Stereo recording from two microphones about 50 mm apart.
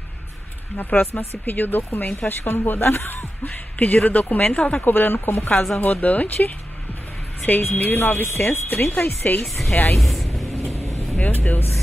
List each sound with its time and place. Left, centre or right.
0.7 s speech: left
3.7 s speech: left
4.8 s speech: left
9.9 s speech: centre
11.1 s speech: left